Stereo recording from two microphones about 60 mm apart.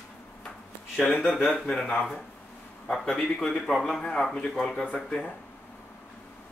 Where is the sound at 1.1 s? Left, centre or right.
Centre.